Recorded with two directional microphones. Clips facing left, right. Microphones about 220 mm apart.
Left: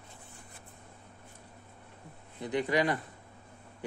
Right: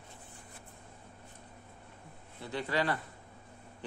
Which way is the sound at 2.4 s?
15° left (ahead or behind).